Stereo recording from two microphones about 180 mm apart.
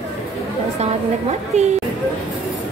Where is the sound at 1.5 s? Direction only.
40° right (ahead or behind).